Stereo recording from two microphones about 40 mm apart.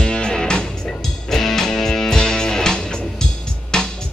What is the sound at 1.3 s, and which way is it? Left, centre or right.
Music, centre.